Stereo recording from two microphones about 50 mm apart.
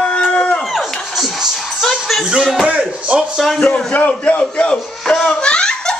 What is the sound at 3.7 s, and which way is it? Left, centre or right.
Speech, left.